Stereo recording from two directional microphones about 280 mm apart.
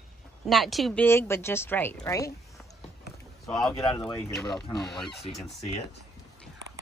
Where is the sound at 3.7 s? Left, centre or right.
Centre.